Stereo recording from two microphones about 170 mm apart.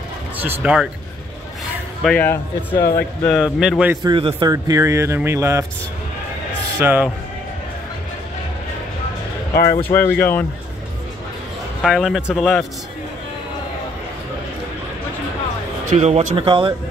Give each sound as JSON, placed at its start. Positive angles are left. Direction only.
{"t": 0.4, "sound": "speech", "side_deg": -10}
{"t": 2.0, "sound": "speech", "side_deg": 10}
{"t": 3.3, "sound": "speech", "side_deg": -5}
{"t": 3.9, "sound": "speech", "side_deg": -25}
{"t": 6.8, "sound": "speech", "side_deg": -10}
{"t": 9.5, "sound": "speech", "side_deg": 60}
{"t": 9.8, "sound": "speech", "side_deg": 10}
{"t": 11.8, "sound": "speech", "side_deg": 0}
{"t": 16.0, "sound": "speech", "side_deg": -40}